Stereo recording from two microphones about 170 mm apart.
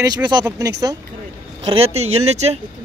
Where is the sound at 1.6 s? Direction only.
35° right (ahead or behind).